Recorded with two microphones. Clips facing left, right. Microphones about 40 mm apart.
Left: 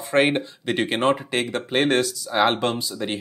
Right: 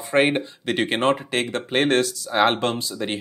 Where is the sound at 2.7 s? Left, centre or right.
Right.